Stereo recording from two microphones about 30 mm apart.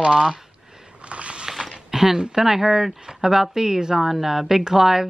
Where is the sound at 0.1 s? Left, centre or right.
Right.